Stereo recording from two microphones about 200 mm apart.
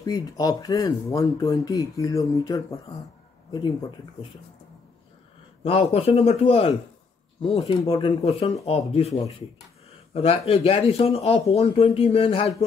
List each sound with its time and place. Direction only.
0.0 s speech: 20° left (ahead or behind)
5.6 s speech: 30° left (ahead or behind)